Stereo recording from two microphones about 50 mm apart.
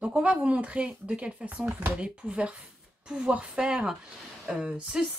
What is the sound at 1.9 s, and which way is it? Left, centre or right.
Speech, right.